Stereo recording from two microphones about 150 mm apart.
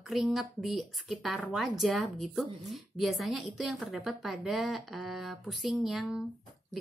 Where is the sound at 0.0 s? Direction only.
Centre (ahead or behind).